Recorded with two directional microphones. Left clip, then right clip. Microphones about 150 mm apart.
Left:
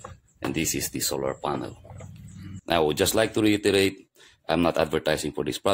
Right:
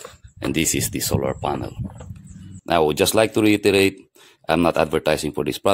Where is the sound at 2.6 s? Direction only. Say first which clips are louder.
Right 5 dB; 30° right (ahead or behind).